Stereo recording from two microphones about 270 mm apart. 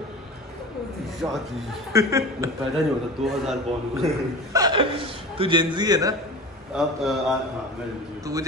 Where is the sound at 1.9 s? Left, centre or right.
Centre.